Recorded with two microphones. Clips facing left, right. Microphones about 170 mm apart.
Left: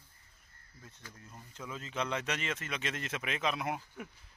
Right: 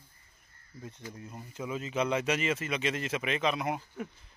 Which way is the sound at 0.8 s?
15° right (ahead or behind).